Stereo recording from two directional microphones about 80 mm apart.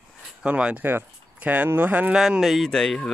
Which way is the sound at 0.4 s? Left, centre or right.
Centre.